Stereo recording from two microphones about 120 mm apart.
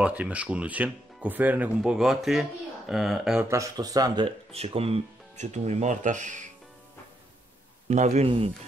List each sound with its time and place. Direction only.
0.0 s speech: 10° right (ahead or behind)
1.8 s speech: 5° right (ahead or behind)
3.4 s speech: 30° right (ahead or behind)
4.5 s speech: 55° right (ahead or behind); by 6.5 s 90° right
7.9 s a man's voice: 75° right (ahead or behind); by 8.5 s 55° right (ahead or behind)